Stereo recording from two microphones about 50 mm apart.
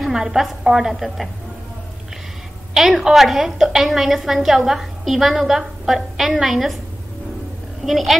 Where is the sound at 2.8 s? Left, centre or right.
Centre.